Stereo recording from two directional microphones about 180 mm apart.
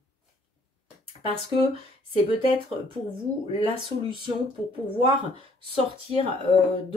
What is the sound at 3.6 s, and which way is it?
Speech, 30° right (ahead or behind).